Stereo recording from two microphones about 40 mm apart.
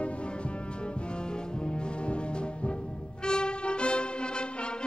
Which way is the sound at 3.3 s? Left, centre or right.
Left.